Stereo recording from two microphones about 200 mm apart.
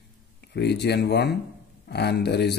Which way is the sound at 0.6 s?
55° left (ahead or behind).